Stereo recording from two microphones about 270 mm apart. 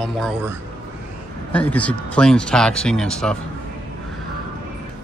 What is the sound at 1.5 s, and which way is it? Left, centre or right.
Speech, centre.